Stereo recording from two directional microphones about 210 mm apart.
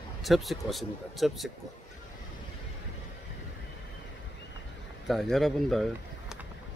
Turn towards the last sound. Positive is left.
turn(degrees=0)  # may be behind; listen again after turning